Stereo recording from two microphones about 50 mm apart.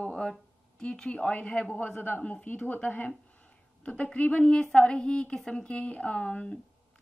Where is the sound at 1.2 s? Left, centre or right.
Left.